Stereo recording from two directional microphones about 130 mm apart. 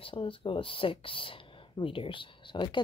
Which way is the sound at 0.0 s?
45° left (ahead or behind).